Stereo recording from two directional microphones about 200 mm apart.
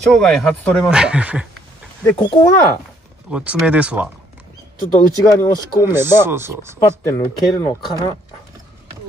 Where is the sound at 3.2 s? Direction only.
5° right (ahead or behind).